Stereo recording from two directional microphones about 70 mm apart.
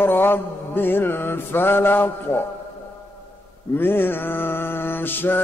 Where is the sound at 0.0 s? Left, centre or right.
Left.